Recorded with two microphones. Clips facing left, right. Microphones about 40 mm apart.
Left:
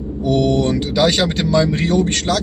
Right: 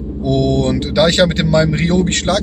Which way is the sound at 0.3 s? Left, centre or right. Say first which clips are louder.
Right 1 dB; right.